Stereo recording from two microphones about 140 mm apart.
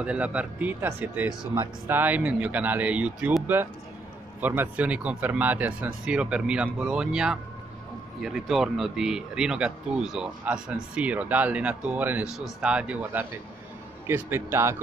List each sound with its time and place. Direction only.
0.0 s speech: 10° right (ahead or behind)